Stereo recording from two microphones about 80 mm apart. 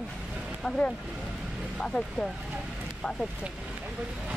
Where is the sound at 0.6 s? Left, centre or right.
Centre.